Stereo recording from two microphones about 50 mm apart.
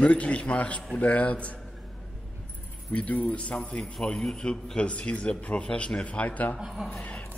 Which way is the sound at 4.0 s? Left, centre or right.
Centre.